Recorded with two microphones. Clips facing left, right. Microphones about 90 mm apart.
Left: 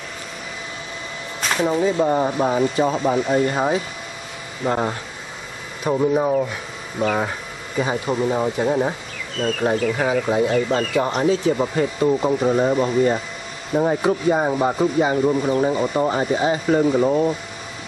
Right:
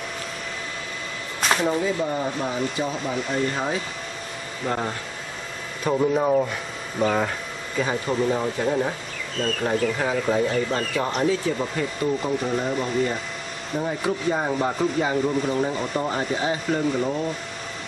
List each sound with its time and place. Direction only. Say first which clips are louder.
1.4 s a sound: right 2 dB; centre (ahead or behind)
2.0 s speech: left 7 dB; 40° left (ahead or behind)
3.5 s speech: left 6 dB; 25° left (ahead or behind)
5.9 s speech: left 2 dB; 5° left (ahead or behind)
7.7 s speech: left 3 dB; 15° left (ahead or behind); by 13.2 s 40° left (ahead or behind)
14.0 s speech: left 5 dB; 15° left (ahead or behind)
17.0 s speech: left 7 dB; 35° left (ahead or behind)